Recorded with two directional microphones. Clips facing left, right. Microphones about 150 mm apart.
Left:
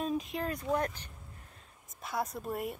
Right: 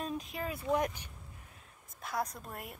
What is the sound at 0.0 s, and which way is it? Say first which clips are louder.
Speech: left 4 dB; centre (ahead or behind).